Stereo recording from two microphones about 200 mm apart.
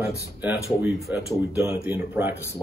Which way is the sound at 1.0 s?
Centre (ahead or behind).